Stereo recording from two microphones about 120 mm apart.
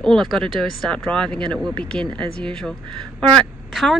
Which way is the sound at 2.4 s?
5° left (ahead or behind).